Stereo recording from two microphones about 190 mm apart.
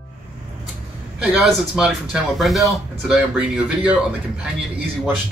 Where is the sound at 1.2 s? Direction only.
5° right (ahead or behind).